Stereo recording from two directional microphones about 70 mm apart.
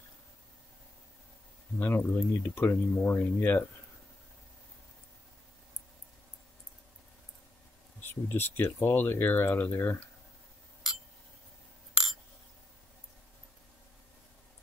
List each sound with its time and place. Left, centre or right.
1.8 s speech: left
8.0 s speech: left
11.9 s a sound: centre